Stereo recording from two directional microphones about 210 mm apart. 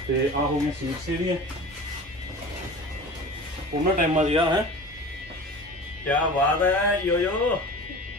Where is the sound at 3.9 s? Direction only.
35° right (ahead or behind).